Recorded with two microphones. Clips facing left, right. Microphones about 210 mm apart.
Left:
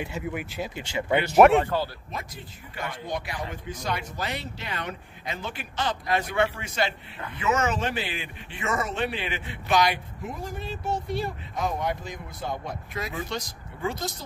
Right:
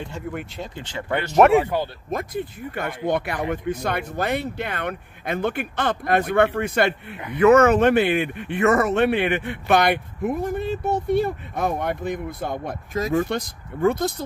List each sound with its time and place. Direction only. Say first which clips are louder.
0.0 s speech: right 1 dB; 5° left (ahead or behind)
1.4 s speech: right 2 dB; 5° right (ahead or behind)
2.0 s speech: right 11 dB; 55° right (ahead or behind)
12.9 s speech: right 11 dB; 45° right (ahead or behind)